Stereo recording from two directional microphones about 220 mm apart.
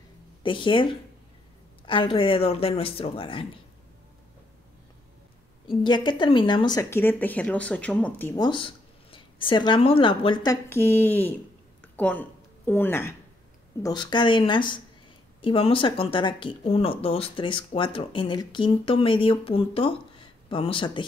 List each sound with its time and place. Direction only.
0.4 s speech: 20° left (ahead or behind)
1.9 s speech: 20° left (ahead or behind)
5.9 s speech: 20° left (ahead or behind)
11.8 s a sound: 5° left (ahead or behind)
13.8 s speech: 20° left (ahead or behind)